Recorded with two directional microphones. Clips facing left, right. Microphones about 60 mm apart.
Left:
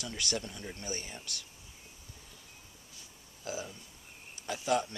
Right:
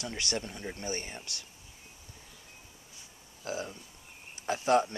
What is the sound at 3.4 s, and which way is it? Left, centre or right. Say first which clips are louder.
Speech: right 3 dB; right.